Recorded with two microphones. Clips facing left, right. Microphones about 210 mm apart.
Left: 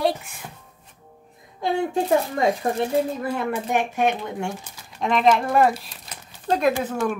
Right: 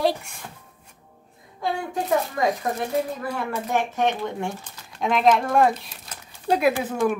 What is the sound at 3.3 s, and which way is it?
Speech, 15° left (ahead or behind).